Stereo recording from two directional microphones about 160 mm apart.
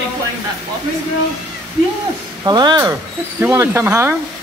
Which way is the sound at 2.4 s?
25° right (ahead or behind).